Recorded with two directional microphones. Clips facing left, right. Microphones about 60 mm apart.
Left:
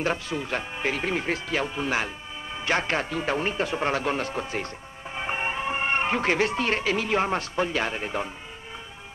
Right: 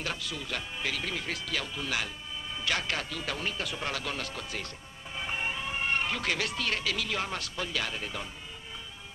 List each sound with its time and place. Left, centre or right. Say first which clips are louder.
0.0 s speech: left 9 dB; left